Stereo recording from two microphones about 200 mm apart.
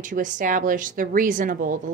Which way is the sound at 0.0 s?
40° right (ahead or behind).